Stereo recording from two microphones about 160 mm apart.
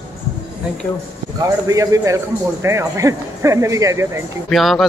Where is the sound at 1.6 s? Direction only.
20° right (ahead or behind).